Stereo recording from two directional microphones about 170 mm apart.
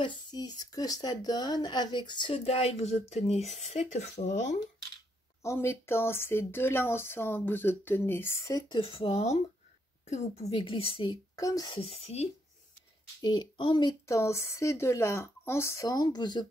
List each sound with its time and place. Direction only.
0.0 s speech: 25° left (ahead or behind); by 4.6 s 45° left (ahead or behind)
5.4 s a woman's voice: 15° left (ahead or behind); by 12.3 s 35° left (ahead or behind)
13.2 s speech: 25° left (ahead or behind)